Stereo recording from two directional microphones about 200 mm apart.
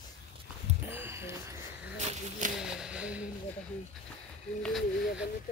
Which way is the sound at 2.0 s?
35° right (ahead or behind).